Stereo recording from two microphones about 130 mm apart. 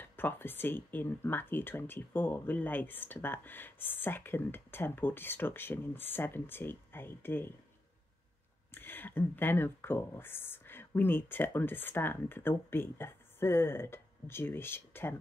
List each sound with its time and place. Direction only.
0.0 s speech: 15° left (ahead or behind)
8.7 s speech: 15° left (ahead or behind)